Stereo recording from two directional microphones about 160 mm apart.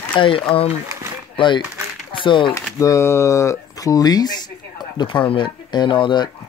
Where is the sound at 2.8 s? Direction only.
20° left (ahead or behind).